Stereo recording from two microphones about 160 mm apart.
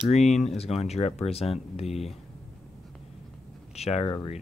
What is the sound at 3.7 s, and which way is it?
Speech, 40° left (ahead or behind).